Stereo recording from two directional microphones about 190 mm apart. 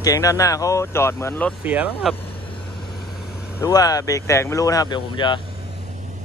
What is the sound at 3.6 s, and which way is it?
Speech, 20° left (ahead or behind).